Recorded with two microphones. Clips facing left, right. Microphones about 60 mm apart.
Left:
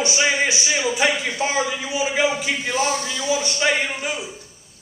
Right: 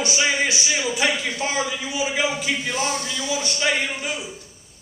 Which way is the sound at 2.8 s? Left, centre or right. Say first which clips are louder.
Left 3 dB; left.